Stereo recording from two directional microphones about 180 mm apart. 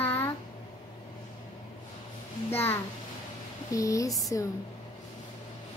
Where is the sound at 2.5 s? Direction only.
10° left (ahead or behind).